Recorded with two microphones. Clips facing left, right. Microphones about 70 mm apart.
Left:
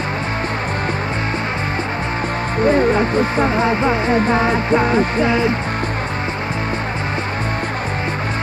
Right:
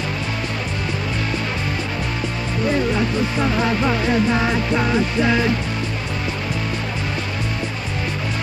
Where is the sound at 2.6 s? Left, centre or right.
Left.